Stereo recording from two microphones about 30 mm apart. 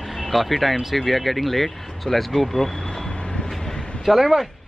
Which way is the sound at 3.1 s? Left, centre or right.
Left.